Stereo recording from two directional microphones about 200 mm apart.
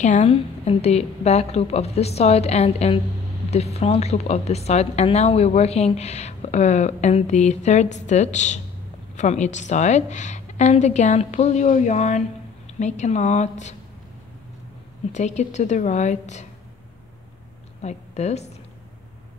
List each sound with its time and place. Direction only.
0.0 s a woman's voice: 35° left (ahead or behind)
15.1 s a woman's voice: 35° left (ahead or behind)
17.8 s a woman's voice: 35° left (ahead or behind)